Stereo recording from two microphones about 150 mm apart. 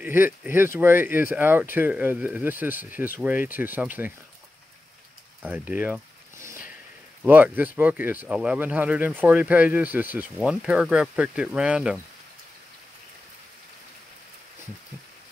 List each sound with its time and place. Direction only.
0.0 s speech: 15° right (ahead or behind)
5.4 s speech: 10° right (ahead or behind)
7.2 s speech: 10° right (ahead or behind)